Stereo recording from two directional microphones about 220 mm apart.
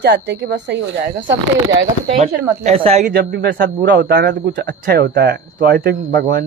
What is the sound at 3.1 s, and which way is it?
Speech, 50° right (ahead or behind).